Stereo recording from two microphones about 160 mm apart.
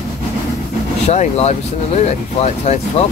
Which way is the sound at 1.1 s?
45° left (ahead or behind).